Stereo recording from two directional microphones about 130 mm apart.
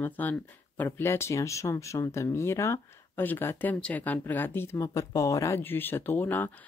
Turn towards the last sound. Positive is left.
turn(degrees=15)  # may be behind; listen again after turning